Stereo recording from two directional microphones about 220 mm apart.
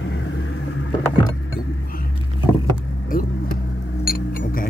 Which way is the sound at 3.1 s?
40° left (ahead or behind).